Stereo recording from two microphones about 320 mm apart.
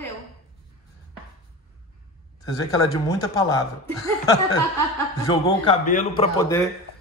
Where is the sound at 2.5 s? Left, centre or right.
Centre.